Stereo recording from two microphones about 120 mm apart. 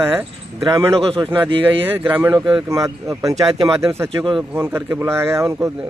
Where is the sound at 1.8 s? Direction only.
15° right (ahead or behind).